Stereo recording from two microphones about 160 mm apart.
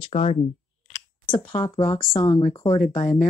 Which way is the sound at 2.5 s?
25° left (ahead or behind).